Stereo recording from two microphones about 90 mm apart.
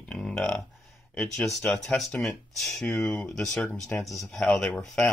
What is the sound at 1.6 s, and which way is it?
Speech, 15° left (ahead or behind).